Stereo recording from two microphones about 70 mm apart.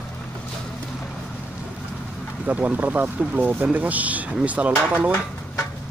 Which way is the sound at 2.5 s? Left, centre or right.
Right.